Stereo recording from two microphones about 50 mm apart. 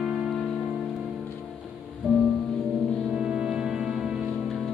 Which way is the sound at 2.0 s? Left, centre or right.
Centre.